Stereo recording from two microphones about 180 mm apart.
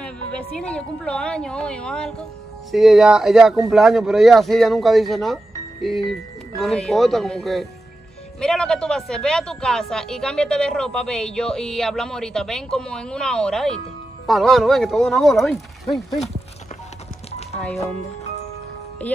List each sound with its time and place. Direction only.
0.0 s speech: 5° left (ahead or behind)
17.7 s speech: 35° left (ahead or behind)